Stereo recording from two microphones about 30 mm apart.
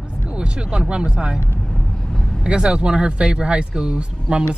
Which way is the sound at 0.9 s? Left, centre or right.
Right.